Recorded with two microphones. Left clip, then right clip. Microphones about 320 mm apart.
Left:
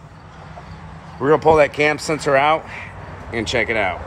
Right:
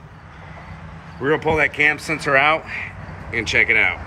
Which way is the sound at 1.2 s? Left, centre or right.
Centre.